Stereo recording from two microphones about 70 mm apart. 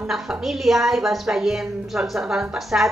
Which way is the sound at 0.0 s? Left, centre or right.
Centre.